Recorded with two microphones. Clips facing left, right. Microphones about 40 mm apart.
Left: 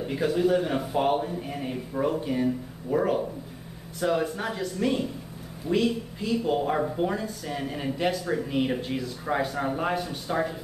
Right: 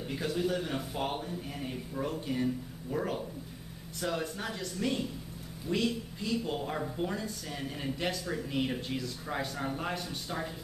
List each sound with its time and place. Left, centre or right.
0.0 s a man's voice: centre